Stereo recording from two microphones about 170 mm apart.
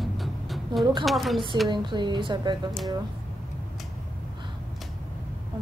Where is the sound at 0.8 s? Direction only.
25° right (ahead or behind).